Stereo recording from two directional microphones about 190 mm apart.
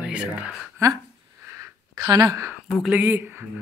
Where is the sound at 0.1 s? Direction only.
5° right (ahead or behind).